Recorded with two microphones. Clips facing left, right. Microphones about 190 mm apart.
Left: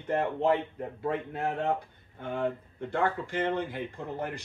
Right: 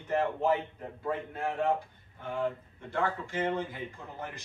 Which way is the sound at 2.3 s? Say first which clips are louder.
Left 1 dB; 55° left (ahead or behind).